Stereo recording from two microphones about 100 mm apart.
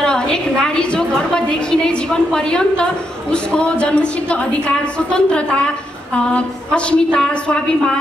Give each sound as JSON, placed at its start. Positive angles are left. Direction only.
{"t": 0.0, "sound": "a woman's voice", "side_deg": 10}